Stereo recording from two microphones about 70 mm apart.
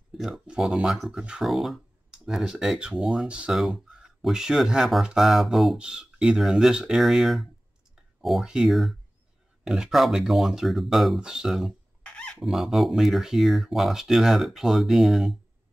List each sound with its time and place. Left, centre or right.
0.6 s speech: centre
3.7 s a sound: centre
4.2 s speech: centre
5.8 s speech: centre
12.0 s a sound: centre
12.4 s speech: centre